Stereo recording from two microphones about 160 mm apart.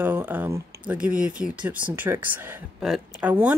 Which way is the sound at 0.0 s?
10° right (ahead or behind).